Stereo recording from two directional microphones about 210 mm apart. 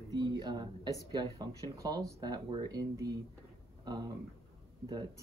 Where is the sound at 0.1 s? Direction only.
20° right (ahead or behind).